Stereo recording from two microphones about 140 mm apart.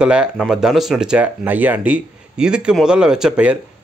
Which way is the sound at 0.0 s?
5° right (ahead or behind).